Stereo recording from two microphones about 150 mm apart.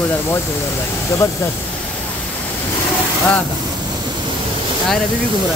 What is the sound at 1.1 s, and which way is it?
Speech, 20° left (ahead or behind).